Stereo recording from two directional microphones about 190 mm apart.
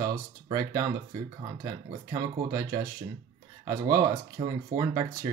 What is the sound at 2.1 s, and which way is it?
Speech, 15° right (ahead or behind).